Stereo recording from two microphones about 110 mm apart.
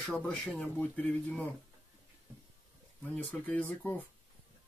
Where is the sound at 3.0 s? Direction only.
15° left (ahead or behind).